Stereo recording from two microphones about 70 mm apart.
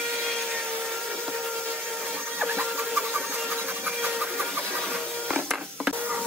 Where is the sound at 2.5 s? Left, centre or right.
Right.